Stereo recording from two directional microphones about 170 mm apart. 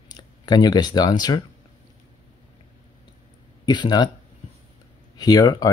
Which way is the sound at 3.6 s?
25° left (ahead or behind).